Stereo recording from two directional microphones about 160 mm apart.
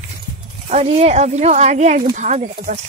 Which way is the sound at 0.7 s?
40° right (ahead or behind).